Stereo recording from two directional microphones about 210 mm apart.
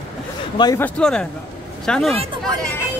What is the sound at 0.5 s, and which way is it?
Speech, 20° left (ahead or behind).